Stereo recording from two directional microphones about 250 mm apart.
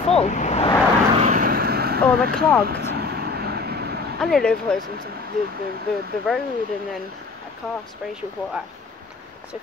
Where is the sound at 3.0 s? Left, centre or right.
Right.